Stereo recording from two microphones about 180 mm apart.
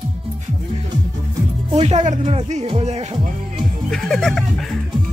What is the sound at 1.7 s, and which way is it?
Speech, 35° right (ahead or behind).